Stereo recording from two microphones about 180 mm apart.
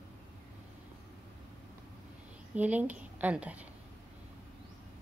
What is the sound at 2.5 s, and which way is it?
A woman's voice, 10° right (ahead or behind).